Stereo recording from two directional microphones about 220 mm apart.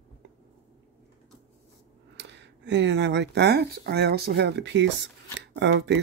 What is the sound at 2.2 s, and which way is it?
Speech, 55° right (ahead or behind).